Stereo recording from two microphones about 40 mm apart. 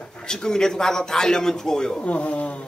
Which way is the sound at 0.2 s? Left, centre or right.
Centre.